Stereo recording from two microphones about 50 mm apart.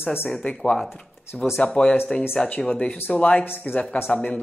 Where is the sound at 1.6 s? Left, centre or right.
Centre.